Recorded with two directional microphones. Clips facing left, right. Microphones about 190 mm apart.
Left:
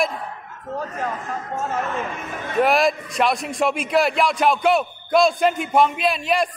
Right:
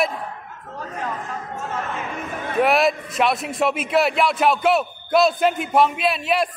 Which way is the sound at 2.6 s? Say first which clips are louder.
Even; centre (ahead or behind).